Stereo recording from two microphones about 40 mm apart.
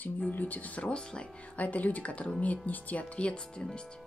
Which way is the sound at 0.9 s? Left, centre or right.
Left.